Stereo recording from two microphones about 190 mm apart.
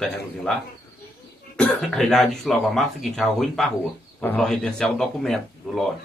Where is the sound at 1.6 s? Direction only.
Centre (ahead or behind).